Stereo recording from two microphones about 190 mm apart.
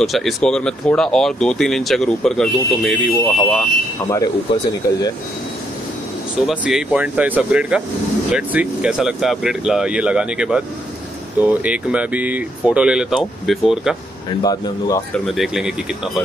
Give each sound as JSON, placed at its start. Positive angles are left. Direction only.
{"t": 0.0, "sound": "speech", "side_deg": 0}
{"t": 4.1, "sound": "speech", "side_deg": 20}
{"t": 6.4, "sound": "speech", "side_deg": -5}
{"t": 14.4, "sound": "speech", "side_deg": 20}
{"t": 15.1, "sound": "speech", "side_deg": 0}